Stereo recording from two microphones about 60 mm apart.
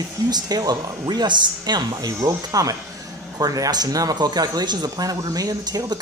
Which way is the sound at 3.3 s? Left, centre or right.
Right.